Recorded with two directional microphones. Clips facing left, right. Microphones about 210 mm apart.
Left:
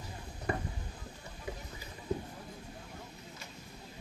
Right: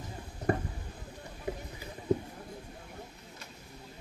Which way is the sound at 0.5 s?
40° right (ahead or behind).